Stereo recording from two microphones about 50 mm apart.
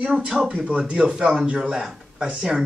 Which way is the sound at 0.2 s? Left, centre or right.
Centre.